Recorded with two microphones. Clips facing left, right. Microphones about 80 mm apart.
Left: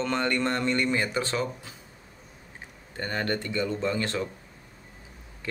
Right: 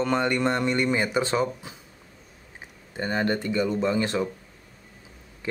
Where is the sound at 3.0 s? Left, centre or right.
Centre.